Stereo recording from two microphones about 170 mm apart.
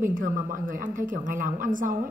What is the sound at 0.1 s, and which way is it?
Speech, 55° right (ahead or behind).